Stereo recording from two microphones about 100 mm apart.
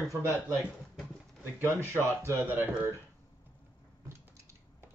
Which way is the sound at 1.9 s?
20° right (ahead or behind).